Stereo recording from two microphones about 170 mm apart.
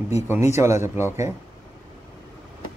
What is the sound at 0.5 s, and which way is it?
Speech, 15° right (ahead or behind).